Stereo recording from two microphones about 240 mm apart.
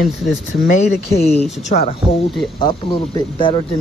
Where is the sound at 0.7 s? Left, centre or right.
Left.